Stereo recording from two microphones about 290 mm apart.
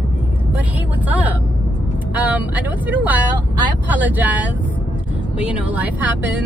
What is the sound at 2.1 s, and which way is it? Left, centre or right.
Speech, centre.